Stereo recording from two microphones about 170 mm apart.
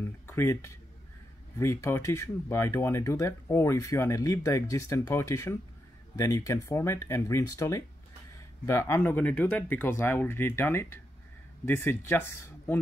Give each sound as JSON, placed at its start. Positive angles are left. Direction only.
{"t": 0.3, "sound": "speech", "side_deg": 15}